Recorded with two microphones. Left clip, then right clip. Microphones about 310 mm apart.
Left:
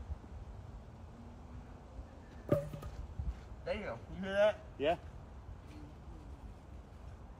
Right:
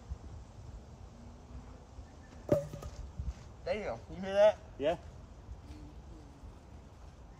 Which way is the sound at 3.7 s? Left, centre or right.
Right.